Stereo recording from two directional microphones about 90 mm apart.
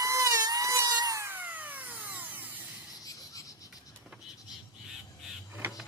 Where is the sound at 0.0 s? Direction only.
35° right (ahead or behind).